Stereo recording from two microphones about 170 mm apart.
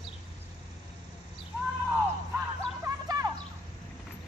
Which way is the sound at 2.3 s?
20° right (ahead or behind).